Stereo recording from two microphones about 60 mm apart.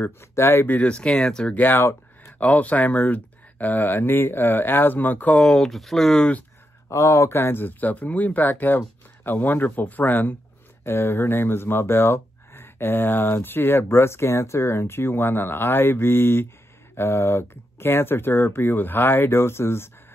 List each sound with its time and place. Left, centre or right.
0.0 s speech: left
0.7 s speech: centre
1.6 s speech: left
2.3 s speech: left
5.4 s speech: centre
6.9 s speech: left
10.9 s speech: left